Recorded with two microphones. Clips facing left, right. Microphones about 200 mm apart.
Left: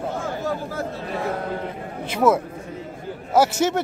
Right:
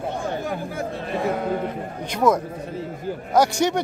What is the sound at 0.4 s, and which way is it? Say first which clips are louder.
Speech: left 1 dB; 15° right (ahead or behind).